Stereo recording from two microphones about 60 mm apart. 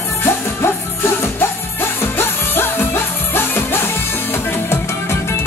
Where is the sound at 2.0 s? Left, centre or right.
Left.